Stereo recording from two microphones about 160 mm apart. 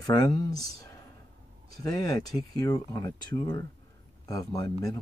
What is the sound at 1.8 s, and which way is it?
Speech, 25° left (ahead or behind).